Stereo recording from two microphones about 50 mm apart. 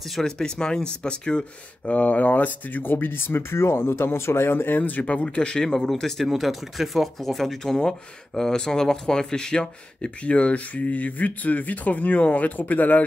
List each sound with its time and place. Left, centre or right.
0.2 s speech: centre; by 13.0 s left